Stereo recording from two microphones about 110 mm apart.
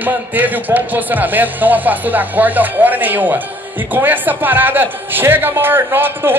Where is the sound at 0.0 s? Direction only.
15° right (ahead or behind).